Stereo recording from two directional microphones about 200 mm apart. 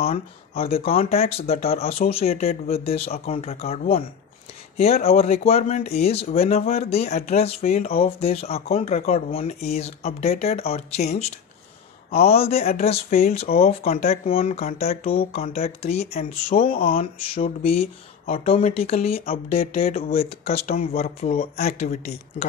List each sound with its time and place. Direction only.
0.6 s speech: 30° left (ahead or behind)